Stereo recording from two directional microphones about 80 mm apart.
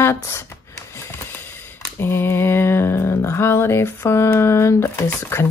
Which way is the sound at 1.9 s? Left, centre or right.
Left.